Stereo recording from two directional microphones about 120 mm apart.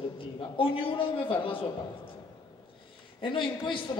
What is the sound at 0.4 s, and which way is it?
A man's voice, 45° left (ahead or behind).